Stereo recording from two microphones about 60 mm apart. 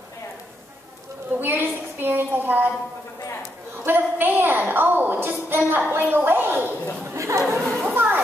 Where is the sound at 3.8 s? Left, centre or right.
Right.